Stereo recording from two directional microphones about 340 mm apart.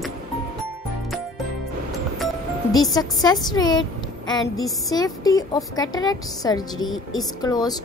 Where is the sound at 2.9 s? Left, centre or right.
Centre.